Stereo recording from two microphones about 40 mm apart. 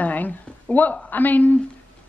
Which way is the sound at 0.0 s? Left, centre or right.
Left.